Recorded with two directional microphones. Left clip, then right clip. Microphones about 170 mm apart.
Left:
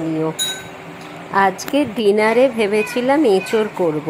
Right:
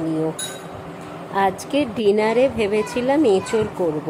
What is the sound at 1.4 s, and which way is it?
A woman's voice, 5° left (ahead or behind).